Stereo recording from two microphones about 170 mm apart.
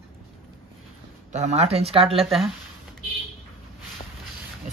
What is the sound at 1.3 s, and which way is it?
Speech, 40° right (ahead or behind).